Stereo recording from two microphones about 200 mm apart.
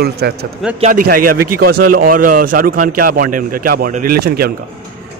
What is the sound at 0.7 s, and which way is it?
A man's voice, 40° right (ahead or behind).